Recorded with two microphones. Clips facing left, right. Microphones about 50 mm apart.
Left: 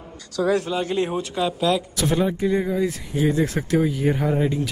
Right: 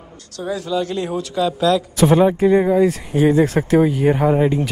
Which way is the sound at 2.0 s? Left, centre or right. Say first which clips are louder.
Right 8 dB; right.